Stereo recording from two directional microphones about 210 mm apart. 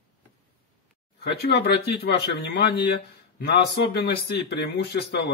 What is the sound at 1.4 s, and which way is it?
Speech, 50° left (ahead or behind).